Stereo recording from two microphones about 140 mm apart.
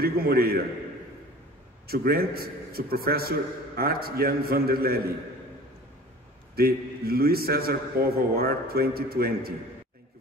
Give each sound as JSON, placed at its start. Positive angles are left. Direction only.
{"t": 0.0, "sound": "a man's voice", "side_deg": -90}
{"t": 1.9, "sound": "a man's voice", "side_deg": -90}
{"t": 6.5, "sound": "a man's voice", "side_deg": -90}
{"t": 8.0, "sound": "a man's voice", "side_deg": -20}
{"t": 8.4, "sound": "a man's voice", "side_deg": -90}